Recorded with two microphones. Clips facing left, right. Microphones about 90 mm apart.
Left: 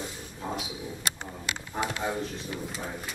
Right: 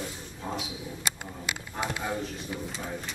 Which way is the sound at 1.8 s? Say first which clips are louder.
Left 1 dB; centre (ahead or behind).